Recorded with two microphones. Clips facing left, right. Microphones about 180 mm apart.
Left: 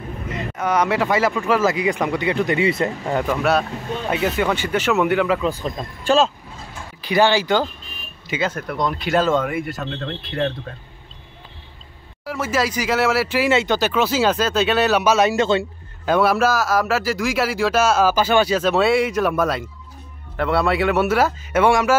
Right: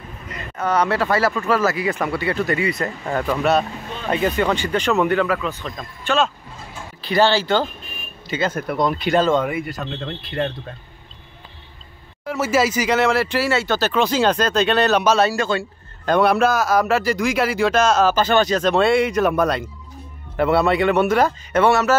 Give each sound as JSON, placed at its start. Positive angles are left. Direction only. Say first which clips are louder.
{"t": 0.6, "sound": "speech", "louder": "even", "side_deg": 10}
{"t": 3.1, "sound": "speech", "louder": "right 1 dB", "side_deg": 10}
{"t": 5.7, "sound": "speech", "louder": "left 5 dB", "side_deg": 30}
{"t": 7.0, "sound": "speech", "louder": "even", "side_deg": 15}
{"t": 8.5, "sound": "a man's voice", "louder": "right 3 dB", "side_deg": -5}
{"t": 12.3, "sound": "a man's voice", "louder": "right 3 dB", "side_deg": -5}
{"t": 13.5, "sound": "speech", "louder": "left 2 dB", "side_deg": 15}
{"t": 16.1, "sound": "a man's voice", "louder": "right 1 dB", "side_deg": 0}